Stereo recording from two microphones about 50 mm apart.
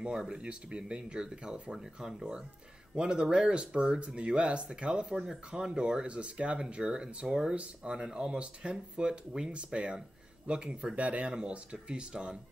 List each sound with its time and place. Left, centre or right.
0.0 s speech: centre